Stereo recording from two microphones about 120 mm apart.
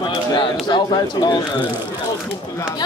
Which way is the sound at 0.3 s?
40° left (ahead or behind).